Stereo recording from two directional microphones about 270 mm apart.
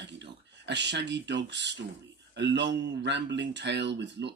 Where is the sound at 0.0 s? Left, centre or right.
Right.